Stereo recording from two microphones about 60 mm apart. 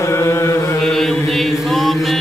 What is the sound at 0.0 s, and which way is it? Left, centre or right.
Chant, left.